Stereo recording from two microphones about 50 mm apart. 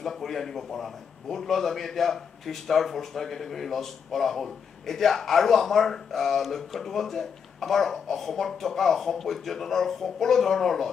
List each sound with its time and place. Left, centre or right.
0.0 s a man's voice: centre